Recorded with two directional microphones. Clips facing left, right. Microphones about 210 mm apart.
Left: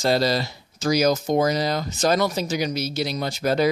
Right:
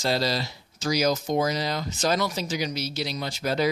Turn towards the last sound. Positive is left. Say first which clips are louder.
# left 5 dB
turn(degrees=50)  # may be behind; listen again after turning